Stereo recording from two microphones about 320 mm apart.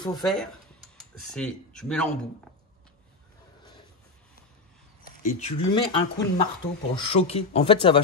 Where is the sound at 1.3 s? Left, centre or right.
Centre.